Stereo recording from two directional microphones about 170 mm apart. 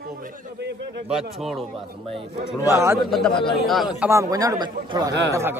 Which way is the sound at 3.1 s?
5° left (ahead or behind).